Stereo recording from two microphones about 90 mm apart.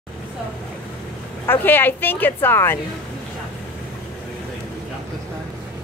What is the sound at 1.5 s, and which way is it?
A woman's voice, 25° left (ahead or behind).